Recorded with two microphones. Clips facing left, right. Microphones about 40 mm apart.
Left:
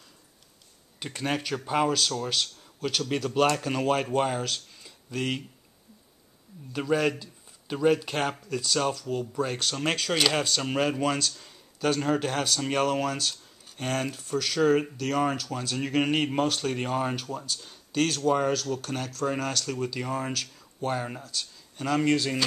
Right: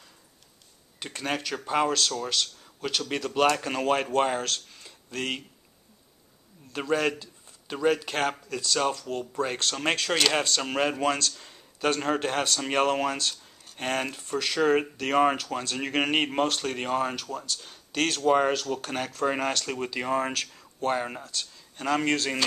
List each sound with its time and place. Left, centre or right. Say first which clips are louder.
0.9 s speech: left 1 dB; centre
6.7 s speech: left 1 dB; centre
9.2 s speech: right 2 dB; centre
11.1 s speech: right 1 dB; centre
11.3 s speech: right 1 dB; centre
21.7 s speech: left 1 dB; centre